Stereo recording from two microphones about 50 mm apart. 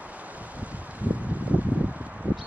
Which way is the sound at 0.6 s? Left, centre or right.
Right.